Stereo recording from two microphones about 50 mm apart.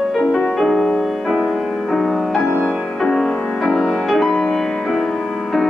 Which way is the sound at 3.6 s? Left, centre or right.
Centre.